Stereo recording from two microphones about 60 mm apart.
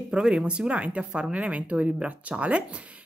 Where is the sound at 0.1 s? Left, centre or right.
Centre.